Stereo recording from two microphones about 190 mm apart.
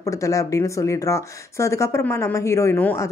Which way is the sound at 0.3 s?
15° left (ahead or behind).